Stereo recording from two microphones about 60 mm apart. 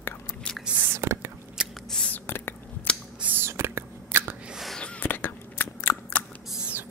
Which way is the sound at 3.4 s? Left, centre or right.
Right.